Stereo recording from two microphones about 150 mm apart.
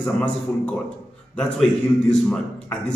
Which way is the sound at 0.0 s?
10° left (ahead or behind).